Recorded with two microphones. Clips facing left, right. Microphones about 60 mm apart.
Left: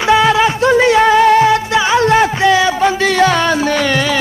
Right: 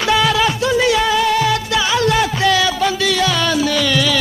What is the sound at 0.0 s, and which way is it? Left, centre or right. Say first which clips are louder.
Music: left 4 dB; left.